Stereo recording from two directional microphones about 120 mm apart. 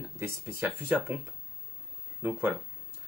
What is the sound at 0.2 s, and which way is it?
Speech, 15° right (ahead or behind).